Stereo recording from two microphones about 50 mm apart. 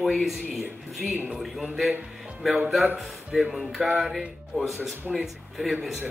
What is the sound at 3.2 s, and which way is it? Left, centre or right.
Speech, centre.